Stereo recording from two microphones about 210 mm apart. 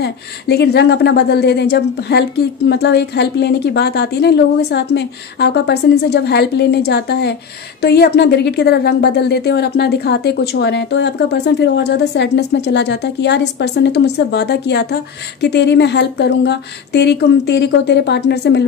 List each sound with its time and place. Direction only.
0.0 s speech: 50° left (ahead or behind)